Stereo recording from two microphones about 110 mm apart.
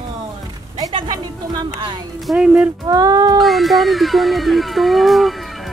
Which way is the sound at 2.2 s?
5° right (ahead or behind).